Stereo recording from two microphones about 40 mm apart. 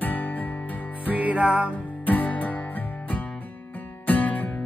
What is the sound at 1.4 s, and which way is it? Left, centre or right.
Music, right.